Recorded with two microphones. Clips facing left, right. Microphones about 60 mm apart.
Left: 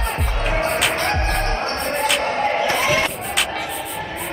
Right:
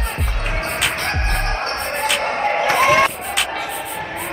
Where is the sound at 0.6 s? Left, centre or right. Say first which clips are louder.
Left 2 dB; centre.